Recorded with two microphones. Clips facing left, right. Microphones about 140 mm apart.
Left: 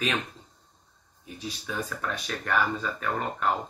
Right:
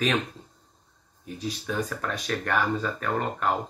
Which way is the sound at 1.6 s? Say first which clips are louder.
Right 2 dB; 40° right (ahead or behind).